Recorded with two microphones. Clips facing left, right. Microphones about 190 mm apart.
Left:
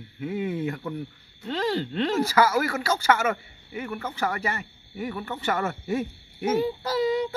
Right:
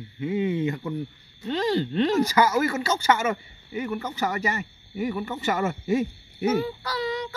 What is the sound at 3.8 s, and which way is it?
Speech, 15° right (ahead or behind).